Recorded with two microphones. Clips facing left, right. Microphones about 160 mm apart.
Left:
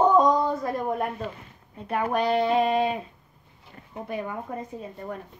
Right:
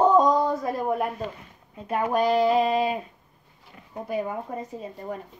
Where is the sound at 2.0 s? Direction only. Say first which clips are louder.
Right 2 dB; 5° right (ahead or behind).